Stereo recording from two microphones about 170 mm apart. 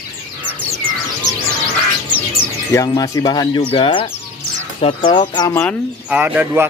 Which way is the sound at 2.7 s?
20° left (ahead or behind).